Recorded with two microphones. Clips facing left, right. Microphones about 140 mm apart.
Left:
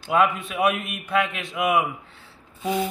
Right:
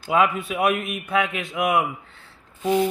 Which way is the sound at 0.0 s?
Centre (ahead or behind).